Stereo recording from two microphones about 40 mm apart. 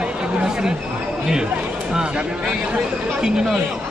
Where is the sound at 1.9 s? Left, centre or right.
Centre.